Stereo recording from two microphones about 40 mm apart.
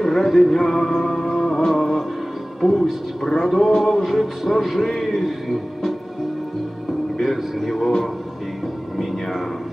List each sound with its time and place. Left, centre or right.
0.0 s music: centre
2.6 s speech: centre
3.3 s a sound: centre
4.0 s a man's voice: centre
7.2 s speech: centre